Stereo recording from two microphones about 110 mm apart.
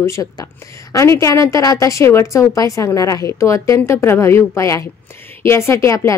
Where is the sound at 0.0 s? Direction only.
30° left (ahead or behind).